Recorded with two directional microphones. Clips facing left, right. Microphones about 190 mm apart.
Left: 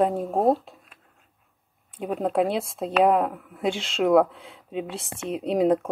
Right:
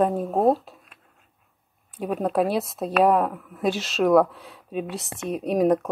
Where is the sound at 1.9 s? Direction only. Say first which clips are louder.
Right 1 dB; 25° left (ahead or behind).